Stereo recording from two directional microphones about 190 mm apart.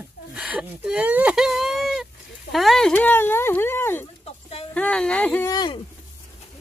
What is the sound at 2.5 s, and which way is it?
Speech, centre (ahead or behind).